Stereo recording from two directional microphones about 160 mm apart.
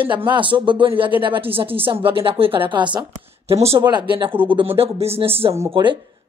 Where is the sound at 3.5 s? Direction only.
40° right (ahead or behind).